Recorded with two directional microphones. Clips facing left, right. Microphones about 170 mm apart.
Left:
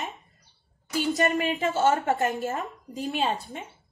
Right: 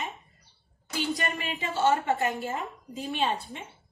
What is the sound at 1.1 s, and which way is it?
A woman's voice, 45° left (ahead or behind).